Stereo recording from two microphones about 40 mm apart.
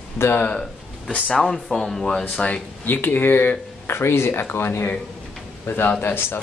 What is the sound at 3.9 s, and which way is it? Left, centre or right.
Speech, left.